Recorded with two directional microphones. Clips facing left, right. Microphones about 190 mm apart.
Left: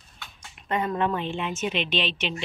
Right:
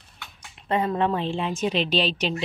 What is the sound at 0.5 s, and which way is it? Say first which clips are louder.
A woman's voice: right 3 dB; 30° right (ahead or behind).